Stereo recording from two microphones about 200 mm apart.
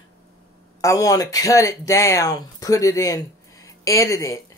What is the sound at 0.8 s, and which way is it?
Speech, 15° left (ahead or behind).